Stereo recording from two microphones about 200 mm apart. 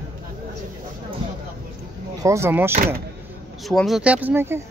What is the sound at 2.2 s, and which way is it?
Speech, 15° right (ahead or behind).